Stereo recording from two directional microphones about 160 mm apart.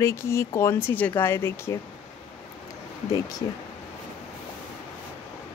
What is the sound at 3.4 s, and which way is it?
Speech, 30° left (ahead or behind).